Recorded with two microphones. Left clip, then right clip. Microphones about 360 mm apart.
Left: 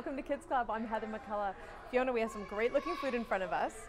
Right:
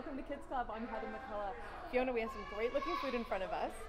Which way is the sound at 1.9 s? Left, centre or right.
Left.